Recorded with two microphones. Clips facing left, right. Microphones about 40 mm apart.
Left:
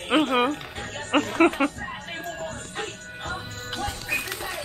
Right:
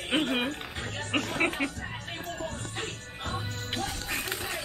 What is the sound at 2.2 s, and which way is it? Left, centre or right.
Music, left.